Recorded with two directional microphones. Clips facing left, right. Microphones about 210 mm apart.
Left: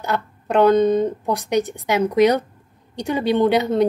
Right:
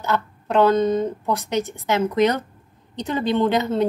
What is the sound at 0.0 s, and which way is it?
A woman's voice, 15° left (ahead or behind).